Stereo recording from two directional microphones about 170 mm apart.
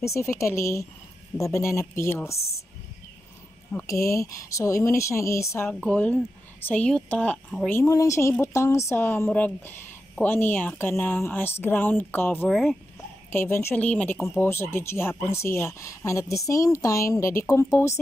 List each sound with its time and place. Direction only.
0.0 s speech: 15° left (ahead or behind)
2.3 s speech: 35° left (ahead or behind)
3.7 s speech: 20° left (ahead or behind)
5.7 s speech: 5° left (ahead or behind)
7.8 s speech: 20° left (ahead or behind)